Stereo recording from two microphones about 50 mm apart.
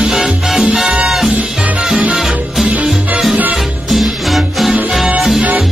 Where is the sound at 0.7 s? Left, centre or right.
Centre.